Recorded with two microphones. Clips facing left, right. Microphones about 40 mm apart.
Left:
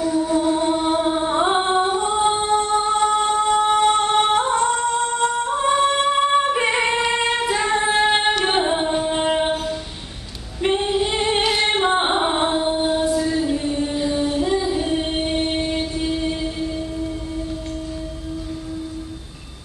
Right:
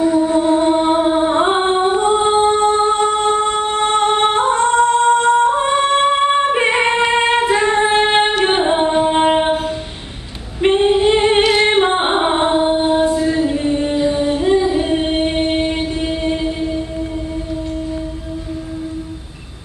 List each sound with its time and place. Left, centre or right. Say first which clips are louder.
0.0 s music: right 5 dB; right
8.4 s singing: right 5 dB; right
10.6 s female singing: right 7 dB; right